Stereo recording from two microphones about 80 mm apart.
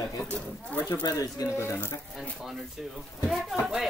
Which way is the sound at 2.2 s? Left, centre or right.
Centre.